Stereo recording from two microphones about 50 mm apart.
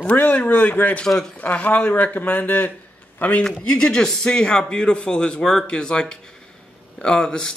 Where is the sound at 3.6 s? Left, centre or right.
Centre.